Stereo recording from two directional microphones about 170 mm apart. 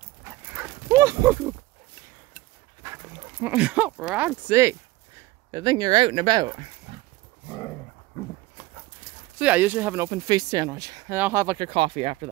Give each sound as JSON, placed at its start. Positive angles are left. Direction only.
{"t": 0.5, "sound": "dog", "side_deg": -10}
{"t": 2.8, "sound": "dog", "side_deg": -15}
{"t": 4.1, "sound": "speech", "side_deg": -10}
{"t": 9.4, "sound": "speech", "side_deg": -10}